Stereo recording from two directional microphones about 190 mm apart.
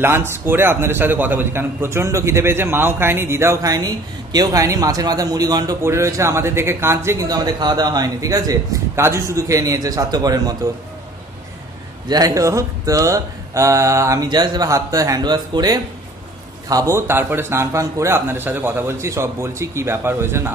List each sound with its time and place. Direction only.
0.0 s a man's voice: 10° right (ahead or behind)
12.1 s a man's voice: 20° right (ahead or behind)